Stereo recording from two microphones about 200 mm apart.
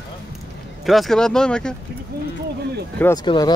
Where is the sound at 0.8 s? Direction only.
Centre (ahead or behind).